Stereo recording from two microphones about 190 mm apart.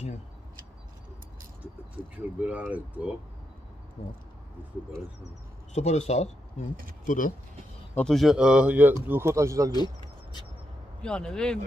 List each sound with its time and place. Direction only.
2.1 s speech: 5° right (ahead or behind)
5.8 s speech: 35° left (ahead or behind)
7.9 s speech: 5° left (ahead or behind); by 9.7 s 15° right (ahead or behind)
11.0 s speech: 5° left (ahead or behind)